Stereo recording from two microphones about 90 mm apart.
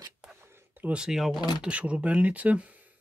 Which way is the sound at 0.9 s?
10° right (ahead or behind).